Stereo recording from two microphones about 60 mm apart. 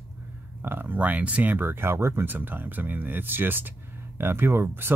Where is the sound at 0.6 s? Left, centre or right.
Right.